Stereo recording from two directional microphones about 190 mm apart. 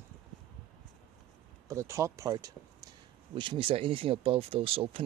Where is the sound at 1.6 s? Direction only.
15° right (ahead or behind).